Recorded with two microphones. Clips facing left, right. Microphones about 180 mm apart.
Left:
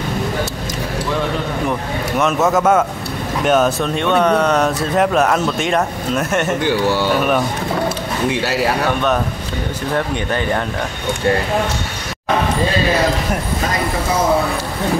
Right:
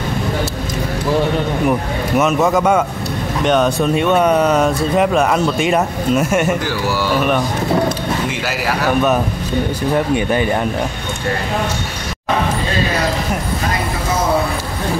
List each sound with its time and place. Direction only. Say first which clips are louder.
1.7 s speech: right 3 dB; 5° right (ahead or behind)
6.7 s speech: left 3 dB; 25° left (ahead or behind)
10.1 s speech: right 3 dB; 10° right (ahead or behind)